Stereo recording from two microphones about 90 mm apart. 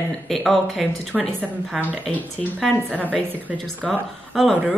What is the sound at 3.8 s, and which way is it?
Speech, 5° left (ahead or behind).